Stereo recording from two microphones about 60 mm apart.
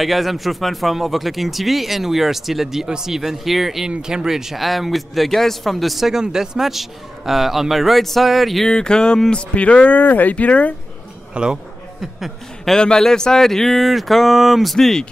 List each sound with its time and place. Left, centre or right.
0.0 s speech: centre
8.7 s speech: centre
11.3 s a sound: centre
12.7 s speech: centre